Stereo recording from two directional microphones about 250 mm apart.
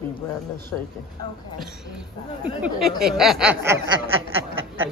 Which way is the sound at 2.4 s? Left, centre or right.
Centre.